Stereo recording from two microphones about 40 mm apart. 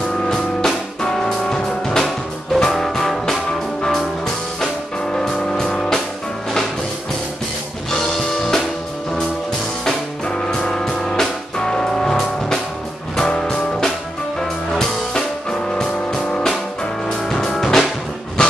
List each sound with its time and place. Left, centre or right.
0.3 s music: centre
5.1 s music: centre
7.9 s music: centre
9.8 s music: centre